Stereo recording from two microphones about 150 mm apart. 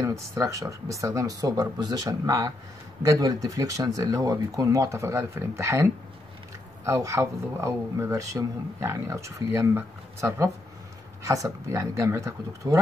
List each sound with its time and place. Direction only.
0.0 s speech: 20° right (ahead or behind)